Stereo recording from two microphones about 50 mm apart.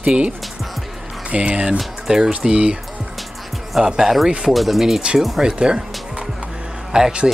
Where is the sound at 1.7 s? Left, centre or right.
Centre.